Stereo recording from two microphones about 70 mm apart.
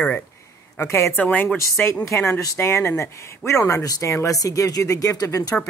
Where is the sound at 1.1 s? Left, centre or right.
Left.